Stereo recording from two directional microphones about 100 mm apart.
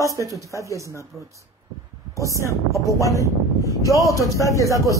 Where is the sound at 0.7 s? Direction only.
30° right (ahead or behind).